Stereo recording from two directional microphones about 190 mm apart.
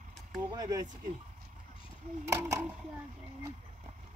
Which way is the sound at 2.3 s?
15° right (ahead or behind).